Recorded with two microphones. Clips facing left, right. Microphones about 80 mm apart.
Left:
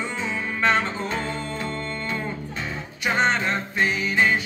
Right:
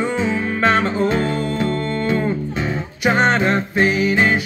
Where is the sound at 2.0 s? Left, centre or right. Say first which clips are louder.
Right 10 dB; right.